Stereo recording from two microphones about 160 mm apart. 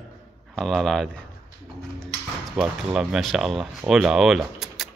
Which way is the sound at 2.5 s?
5° right (ahead or behind).